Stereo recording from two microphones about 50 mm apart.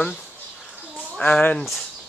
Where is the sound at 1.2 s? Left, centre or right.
Left.